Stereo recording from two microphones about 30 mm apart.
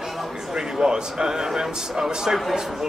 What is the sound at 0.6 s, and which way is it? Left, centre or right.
Speech, right.